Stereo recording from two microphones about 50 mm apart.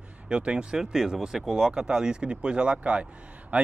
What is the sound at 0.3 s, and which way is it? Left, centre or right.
Speech, centre.